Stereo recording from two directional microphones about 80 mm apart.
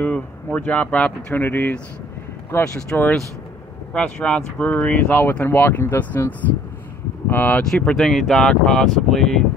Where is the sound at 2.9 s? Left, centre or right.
Left.